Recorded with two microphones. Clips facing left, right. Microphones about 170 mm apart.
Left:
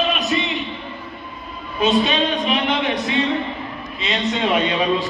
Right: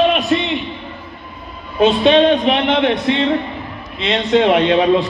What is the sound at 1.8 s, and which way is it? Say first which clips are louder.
A man's voice: right 7 dB; 70° right (ahead or behind).